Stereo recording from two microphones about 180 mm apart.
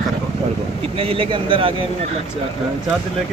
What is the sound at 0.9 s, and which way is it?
Speech, 30° right (ahead or behind).